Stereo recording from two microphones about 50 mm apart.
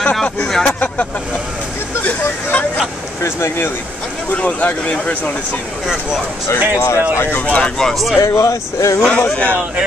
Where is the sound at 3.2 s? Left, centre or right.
Left.